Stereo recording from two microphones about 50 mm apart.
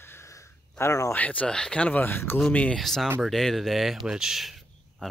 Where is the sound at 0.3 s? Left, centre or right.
Left.